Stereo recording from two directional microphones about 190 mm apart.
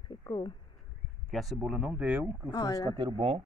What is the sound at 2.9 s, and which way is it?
Speech, 25° right (ahead or behind).